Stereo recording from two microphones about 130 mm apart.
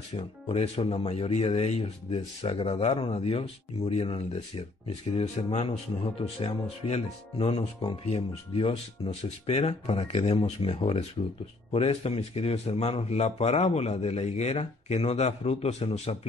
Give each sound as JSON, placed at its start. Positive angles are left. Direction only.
{"t": 0.1, "sound": "speech", "side_deg": 45}